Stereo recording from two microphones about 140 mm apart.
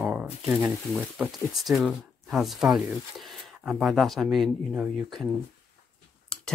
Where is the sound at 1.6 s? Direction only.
Centre (ahead or behind).